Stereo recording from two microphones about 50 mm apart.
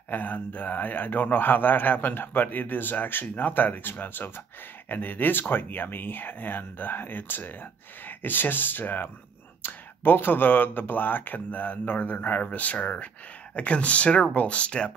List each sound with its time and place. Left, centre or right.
0.1 s a man's voice: left